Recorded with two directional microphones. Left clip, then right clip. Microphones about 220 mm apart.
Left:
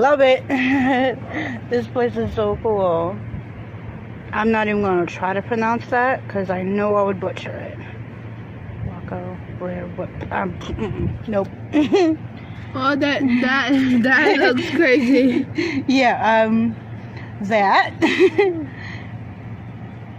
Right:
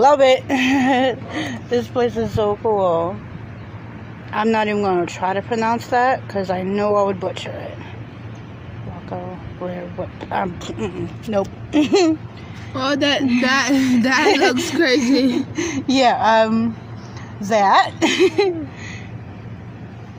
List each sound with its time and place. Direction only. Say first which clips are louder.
0.0 s speech: right 2 dB; 5° right (ahead or behind)
4.3 s a man's voice: right 1 dB; centre (ahead or behind)
10.3 s speech: right 2 dB; 5° right (ahead or behind)
13.5 s a woman's voice: right 2 dB; 35° right (ahead or behind)
14.3 s speech: even; 10° right (ahead or behind)
15.3 s a man's voice: left 1 dB; centre (ahead or behind)